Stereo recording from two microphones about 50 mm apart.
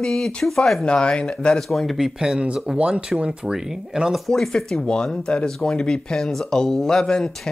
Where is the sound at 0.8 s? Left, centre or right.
Left.